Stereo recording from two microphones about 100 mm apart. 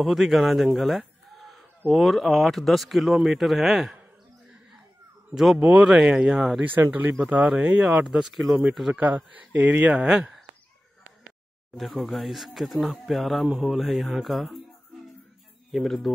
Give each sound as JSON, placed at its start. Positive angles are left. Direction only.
{"t": 0.0, "sound": "speech", "side_deg": 0}
{"t": 0.7, "sound": "chicken", "side_deg": 0}
{"t": 1.9, "sound": "speech", "side_deg": 0}
{"t": 5.3, "sound": "speech", "side_deg": -5}
{"t": 6.7, "sound": "speech", "side_deg": -20}
{"t": 8.9, "sound": "speech", "side_deg": -15}
{"t": 11.7, "sound": "speech", "side_deg": 0}
{"t": 15.7, "sound": "speech", "side_deg": 0}